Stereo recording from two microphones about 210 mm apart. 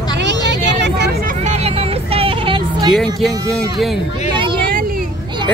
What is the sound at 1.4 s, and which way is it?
Vehicle, 30° right (ahead or behind).